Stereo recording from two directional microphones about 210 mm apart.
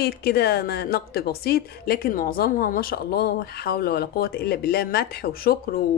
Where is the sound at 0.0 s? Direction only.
50° left (ahead or behind).